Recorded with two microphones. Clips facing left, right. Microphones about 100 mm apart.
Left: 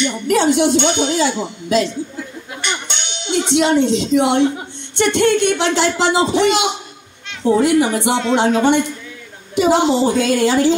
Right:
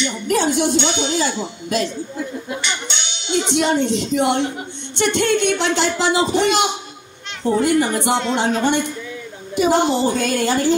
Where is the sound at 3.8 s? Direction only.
50° right (ahead or behind).